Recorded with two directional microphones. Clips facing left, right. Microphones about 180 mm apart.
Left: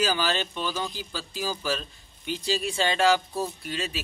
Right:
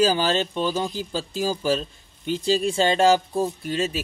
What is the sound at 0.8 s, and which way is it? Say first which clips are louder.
Speech: right 7 dB; 45° right (ahead or behind).